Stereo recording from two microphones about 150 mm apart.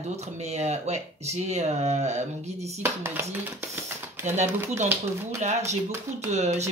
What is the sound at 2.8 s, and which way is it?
Speech, 15° right (ahead or behind).